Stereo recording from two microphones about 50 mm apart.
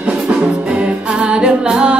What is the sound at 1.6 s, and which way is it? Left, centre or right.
Music, centre.